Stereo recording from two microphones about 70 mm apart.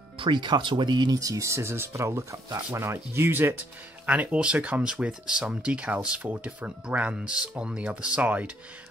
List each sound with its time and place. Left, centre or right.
0.3 s speech: right
4.0 s speech: right